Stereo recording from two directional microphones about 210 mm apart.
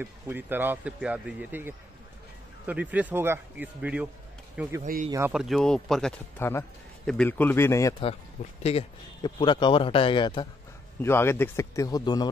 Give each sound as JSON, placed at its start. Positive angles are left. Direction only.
{"t": 0.0, "sound": "speech", "side_deg": -10}
{"t": 4.8, "sound": "speech", "side_deg": -40}
{"t": 5.3, "sound": "speech", "side_deg": 0}
{"t": 8.6, "sound": "a man's voice", "side_deg": 25}